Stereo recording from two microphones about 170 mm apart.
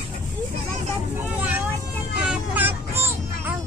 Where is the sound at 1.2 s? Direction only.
10° right (ahead or behind).